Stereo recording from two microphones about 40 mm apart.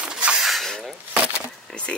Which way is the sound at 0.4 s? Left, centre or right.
Centre.